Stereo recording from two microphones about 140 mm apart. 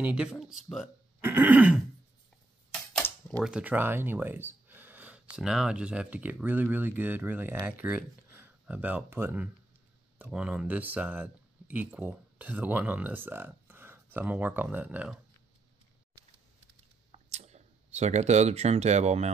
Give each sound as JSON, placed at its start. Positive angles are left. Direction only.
{"t": 0.0, "sound": "speech", "side_deg": -5}
{"t": 1.2, "sound": "speech", "side_deg": -15}
{"t": 2.7, "sound": "typewriter", "side_deg": 10}
{"t": 3.4, "sound": "speech", "side_deg": -10}
{"t": 17.1, "sound": "speech", "side_deg": -50}